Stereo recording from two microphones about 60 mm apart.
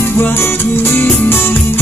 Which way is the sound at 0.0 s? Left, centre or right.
Left.